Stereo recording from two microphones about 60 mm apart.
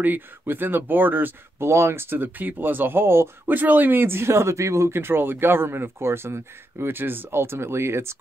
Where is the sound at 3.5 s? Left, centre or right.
Right.